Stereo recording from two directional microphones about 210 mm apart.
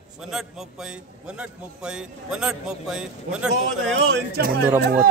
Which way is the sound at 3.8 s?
60° right (ahead or behind).